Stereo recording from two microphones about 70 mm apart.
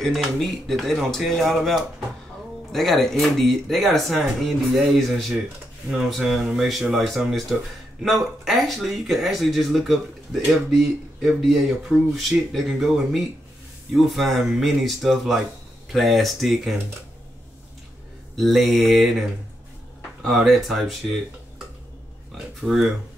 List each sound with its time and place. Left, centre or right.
0.0 s speech: centre
18.3 s speech: centre
22.6 s speech: centre